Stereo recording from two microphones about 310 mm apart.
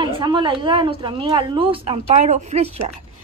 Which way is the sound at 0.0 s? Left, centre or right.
Centre.